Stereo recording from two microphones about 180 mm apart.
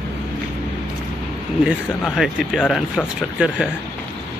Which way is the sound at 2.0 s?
Centre (ahead or behind).